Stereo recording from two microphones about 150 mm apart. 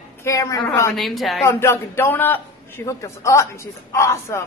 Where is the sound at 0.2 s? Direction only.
20° left (ahead or behind).